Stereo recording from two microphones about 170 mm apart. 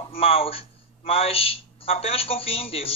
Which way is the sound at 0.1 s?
35° left (ahead or behind).